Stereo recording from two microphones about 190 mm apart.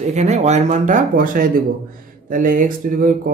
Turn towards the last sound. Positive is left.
turn(degrees=-45)  # may be behind; listen again after turning